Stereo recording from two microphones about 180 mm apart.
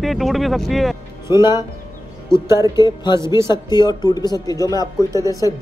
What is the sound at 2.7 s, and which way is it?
Speech, 25° left (ahead or behind).